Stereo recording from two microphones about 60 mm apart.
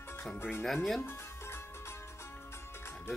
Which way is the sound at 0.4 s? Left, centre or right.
Left.